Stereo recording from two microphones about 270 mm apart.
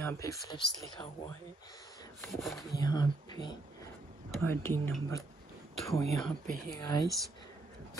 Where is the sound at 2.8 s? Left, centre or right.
Centre.